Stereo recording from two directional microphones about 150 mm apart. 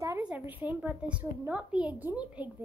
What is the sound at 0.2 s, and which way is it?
A child's voice, 10° right (ahead or behind).